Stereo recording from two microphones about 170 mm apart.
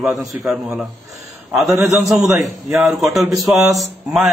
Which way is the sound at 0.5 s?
5° right (ahead or behind).